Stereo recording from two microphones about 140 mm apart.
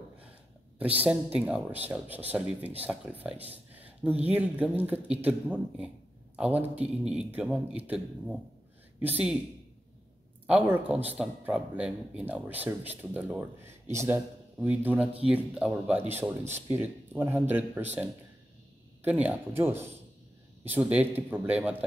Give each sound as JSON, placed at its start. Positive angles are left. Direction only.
{"t": 1.4, "sound": "speech", "side_deg": -10}
{"t": 3.7, "sound": "a sound", "side_deg": -10}
{"t": 4.3, "sound": "a man's voice", "side_deg": -10}
{"t": 10.4, "sound": "speech", "side_deg": -10}